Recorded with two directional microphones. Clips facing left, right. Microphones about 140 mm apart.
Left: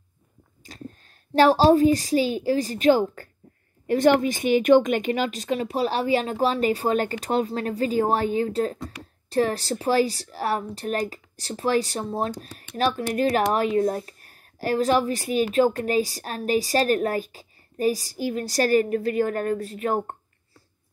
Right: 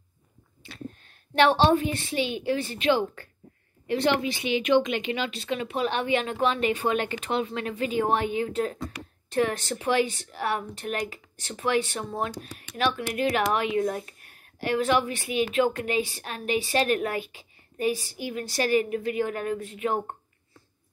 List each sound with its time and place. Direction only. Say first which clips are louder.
0.6 s a woman's voice: even; 40° left (ahead or behind)